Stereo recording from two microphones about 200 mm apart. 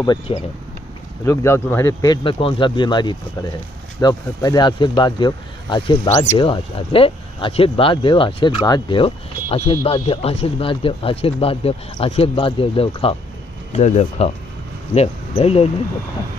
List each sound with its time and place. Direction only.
0.3 s speech: 25° left (ahead or behind)
1.2 s speech: 15° left (ahead or behind); by 15.7 s 30° left (ahead or behind)